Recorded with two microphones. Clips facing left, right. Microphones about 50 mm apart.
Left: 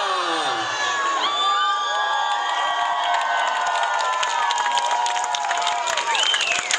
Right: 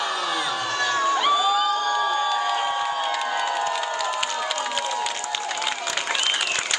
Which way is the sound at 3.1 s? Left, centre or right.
Left.